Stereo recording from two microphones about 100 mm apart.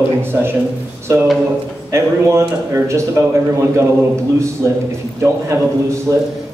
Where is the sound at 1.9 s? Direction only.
25° right (ahead or behind).